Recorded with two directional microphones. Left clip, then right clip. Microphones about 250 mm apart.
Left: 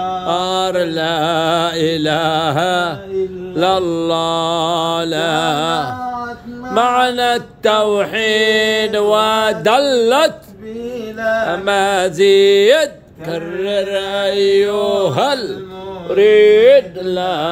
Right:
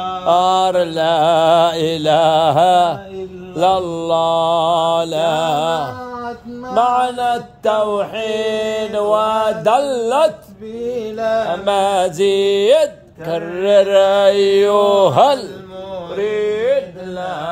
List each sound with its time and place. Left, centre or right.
0.3 s mantra: centre
11.1 s music: right
11.6 s mantra: centre
16.3 s speech: centre